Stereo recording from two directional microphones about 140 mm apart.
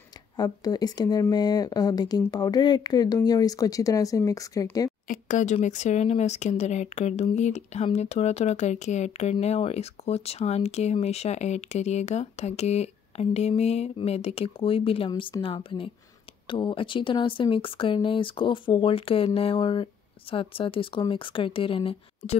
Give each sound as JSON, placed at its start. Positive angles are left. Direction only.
{"t": 0.4, "sound": "speech", "side_deg": 30}
{"t": 5.0, "sound": "speech", "side_deg": 70}